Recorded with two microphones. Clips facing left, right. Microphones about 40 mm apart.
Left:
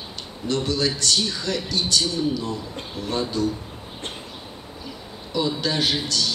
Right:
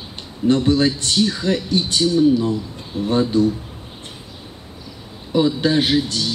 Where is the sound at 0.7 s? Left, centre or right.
Right.